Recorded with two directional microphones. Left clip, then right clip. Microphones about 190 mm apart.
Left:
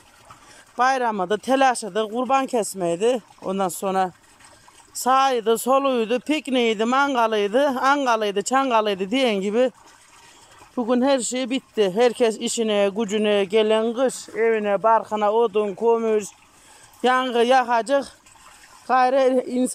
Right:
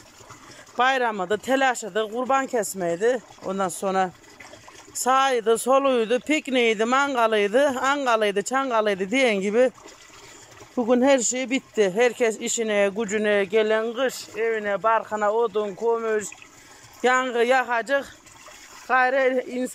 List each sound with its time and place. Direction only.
0.7 s speech: 5° left (ahead or behind)
10.8 s speech: centre (ahead or behind); by 14.3 s 15° left (ahead or behind)
14.3 s speech: centre (ahead or behind)